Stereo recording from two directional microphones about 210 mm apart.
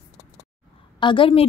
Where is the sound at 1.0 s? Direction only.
25° left (ahead or behind).